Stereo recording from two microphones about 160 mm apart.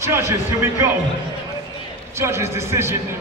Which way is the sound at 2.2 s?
15° right (ahead or behind).